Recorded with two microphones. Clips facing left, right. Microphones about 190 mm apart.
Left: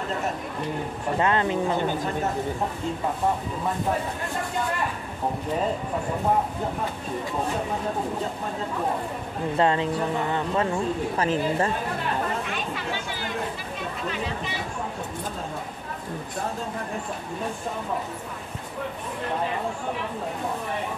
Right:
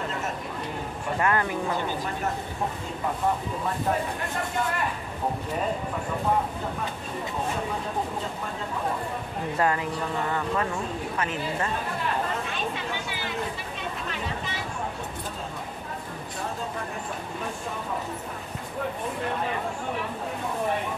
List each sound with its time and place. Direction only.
1.2 s speech: 20° left (ahead or behind)
9.6 s speech: 25° left (ahead or behind)